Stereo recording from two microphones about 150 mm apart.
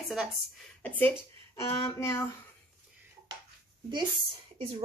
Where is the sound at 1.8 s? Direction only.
15° left (ahead or behind).